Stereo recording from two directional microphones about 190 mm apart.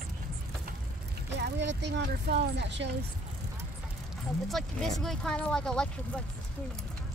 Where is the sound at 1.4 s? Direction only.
65° right (ahead or behind).